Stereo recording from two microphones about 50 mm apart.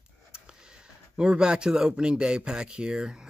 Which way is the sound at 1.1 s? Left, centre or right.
Centre.